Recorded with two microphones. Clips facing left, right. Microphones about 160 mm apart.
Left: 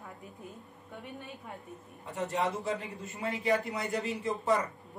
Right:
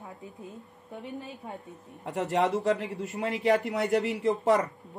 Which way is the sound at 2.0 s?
90° right.